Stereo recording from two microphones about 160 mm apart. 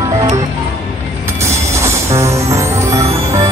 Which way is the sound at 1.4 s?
15° right (ahead or behind).